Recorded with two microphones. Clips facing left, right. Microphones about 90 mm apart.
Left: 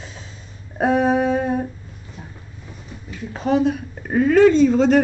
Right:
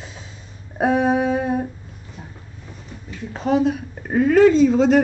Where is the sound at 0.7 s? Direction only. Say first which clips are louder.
Left 1 dB; 5° right (ahead or behind).